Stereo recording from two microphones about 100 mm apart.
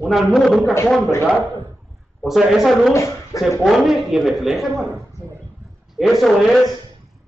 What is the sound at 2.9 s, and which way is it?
Speech, 30° left (ahead or behind).